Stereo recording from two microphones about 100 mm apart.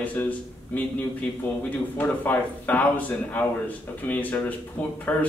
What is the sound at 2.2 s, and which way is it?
A man's voice, 15° left (ahead or behind).